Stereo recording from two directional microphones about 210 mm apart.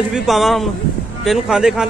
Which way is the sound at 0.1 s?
Centre (ahead or behind).